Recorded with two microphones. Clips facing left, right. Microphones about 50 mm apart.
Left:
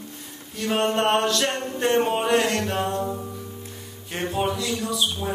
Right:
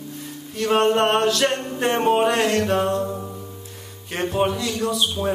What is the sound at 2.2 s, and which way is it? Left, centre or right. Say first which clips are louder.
Music: right 1 dB; centre.